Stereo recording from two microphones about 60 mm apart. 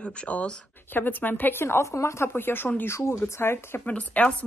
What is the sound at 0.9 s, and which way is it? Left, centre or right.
Speech, left.